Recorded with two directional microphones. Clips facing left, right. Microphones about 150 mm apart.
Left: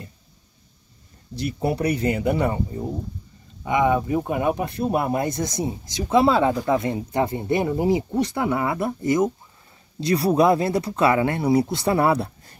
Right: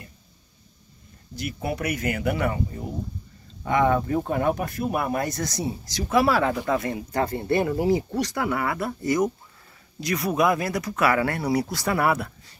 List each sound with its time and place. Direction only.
1.4 s speech: 30° left (ahead or behind)
3.6 s speech: 15° left (ahead or behind)